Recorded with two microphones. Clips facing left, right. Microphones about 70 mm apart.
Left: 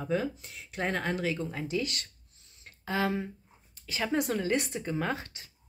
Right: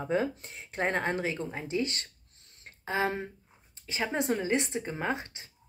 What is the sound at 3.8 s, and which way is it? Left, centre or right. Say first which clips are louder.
Speech: left 1 dB; right.